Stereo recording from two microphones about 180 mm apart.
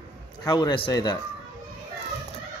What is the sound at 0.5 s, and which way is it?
Speech, 25° left (ahead or behind).